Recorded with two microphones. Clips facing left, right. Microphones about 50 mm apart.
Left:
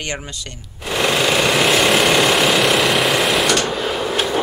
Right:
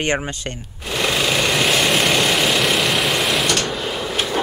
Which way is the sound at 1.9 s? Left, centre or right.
Centre.